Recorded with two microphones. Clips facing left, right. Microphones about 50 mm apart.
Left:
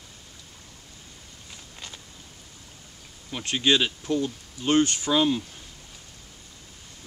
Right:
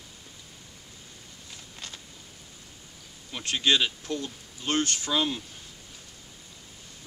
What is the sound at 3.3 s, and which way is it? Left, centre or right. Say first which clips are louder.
Speech: left 2 dB; centre.